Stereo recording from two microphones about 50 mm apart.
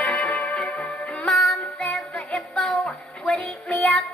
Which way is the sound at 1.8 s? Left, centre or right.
Left.